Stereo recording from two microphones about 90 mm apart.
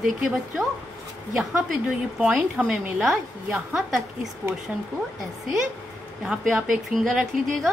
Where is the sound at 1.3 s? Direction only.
5° right (ahead or behind).